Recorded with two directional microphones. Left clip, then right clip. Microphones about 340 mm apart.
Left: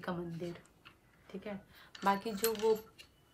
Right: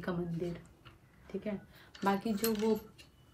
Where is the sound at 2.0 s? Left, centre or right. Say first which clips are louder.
Left 1 dB; centre.